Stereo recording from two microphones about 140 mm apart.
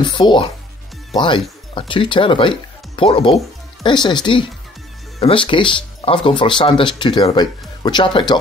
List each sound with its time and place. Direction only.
0.0 s speech: 35° left (ahead or behind)